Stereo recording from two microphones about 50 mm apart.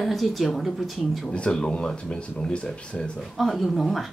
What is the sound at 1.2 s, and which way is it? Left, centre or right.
Speech, left.